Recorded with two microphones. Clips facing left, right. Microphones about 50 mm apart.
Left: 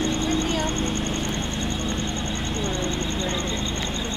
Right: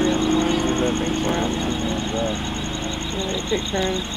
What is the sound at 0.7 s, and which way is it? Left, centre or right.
Vehicle, right.